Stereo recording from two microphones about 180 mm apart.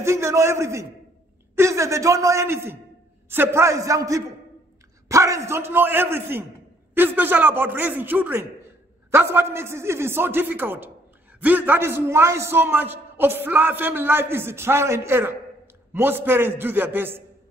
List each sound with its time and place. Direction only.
0.0 s a man's voice: 15° right (ahead or behind)